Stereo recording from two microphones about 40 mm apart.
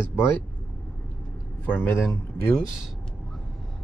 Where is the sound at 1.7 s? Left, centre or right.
Left.